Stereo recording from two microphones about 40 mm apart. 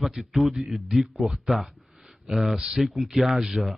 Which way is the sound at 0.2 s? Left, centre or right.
Centre.